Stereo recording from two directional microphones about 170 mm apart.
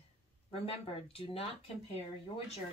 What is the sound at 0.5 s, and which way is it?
Speech, 35° left (ahead or behind).